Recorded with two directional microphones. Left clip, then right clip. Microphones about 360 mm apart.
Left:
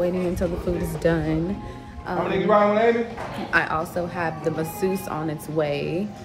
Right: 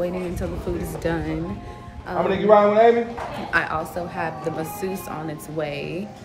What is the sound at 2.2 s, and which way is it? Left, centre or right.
Speech, right.